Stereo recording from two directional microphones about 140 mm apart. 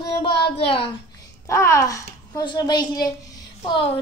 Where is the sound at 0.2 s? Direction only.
40° left (ahead or behind).